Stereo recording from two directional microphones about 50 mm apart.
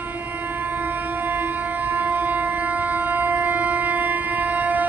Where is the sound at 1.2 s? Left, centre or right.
Right.